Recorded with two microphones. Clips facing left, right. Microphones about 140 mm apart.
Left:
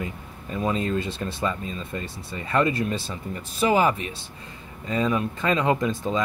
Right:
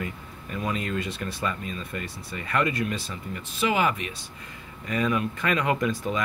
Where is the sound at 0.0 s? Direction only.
25° left (ahead or behind).